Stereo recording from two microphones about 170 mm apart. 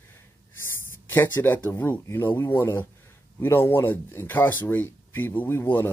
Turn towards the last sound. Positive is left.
turn(degrees=15)  # may be behind; listen again after turning